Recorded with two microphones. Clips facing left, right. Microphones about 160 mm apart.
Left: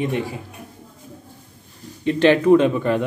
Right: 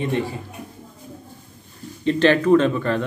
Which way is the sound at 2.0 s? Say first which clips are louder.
Left 2 dB; 15° left (ahead or behind).